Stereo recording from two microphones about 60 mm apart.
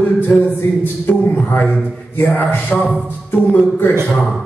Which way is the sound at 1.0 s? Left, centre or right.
Left.